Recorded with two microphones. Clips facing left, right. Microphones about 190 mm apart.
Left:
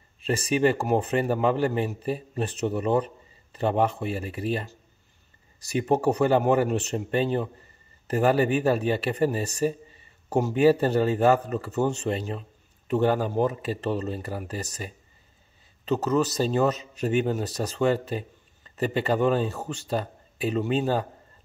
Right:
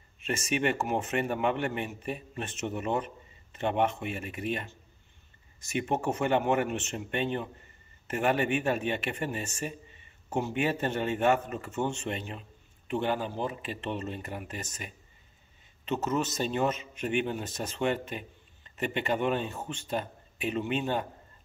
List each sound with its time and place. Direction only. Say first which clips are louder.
0.2 s speech: left 7 dB; 35° left (ahead or behind)